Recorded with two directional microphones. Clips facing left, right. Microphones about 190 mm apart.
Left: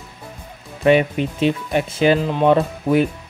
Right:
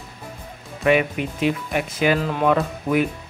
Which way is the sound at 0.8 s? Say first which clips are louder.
Left 4 dB; 30° left (ahead or behind).